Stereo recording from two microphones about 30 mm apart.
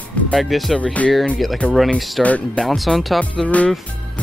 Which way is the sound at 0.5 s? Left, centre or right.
Centre.